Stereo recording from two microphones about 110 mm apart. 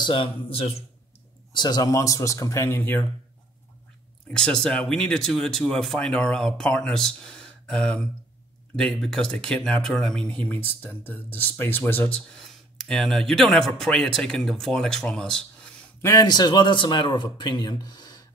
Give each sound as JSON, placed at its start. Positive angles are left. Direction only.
{"t": 0.0, "sound": "speech", "side_deg": 50}
{"t": 1.5, "sound": "speech", "side_deg": 40}
{"t": 4.4, "sound": "speech", "side_deg": 5}
{"t": 12.4, "sound": "speech", "side_deg": 5}
{"t": 16.0, "sound": "a man's voice", "side_deg": 25}
{"t": 16.3, "sound": "speech", "side_deg": 40}